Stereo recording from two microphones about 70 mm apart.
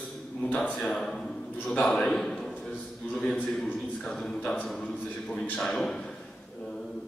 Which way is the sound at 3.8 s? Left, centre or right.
Centre.